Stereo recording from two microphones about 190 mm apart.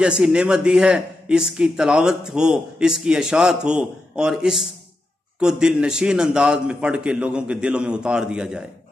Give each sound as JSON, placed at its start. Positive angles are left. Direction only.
{"t": 0.0, "sound": "a man's voice", "side_deg": -5}